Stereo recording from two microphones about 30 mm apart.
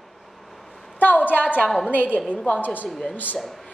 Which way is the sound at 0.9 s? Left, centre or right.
Left.